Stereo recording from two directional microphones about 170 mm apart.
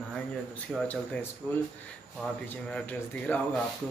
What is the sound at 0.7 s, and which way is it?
Speech, centre (ahead or behind).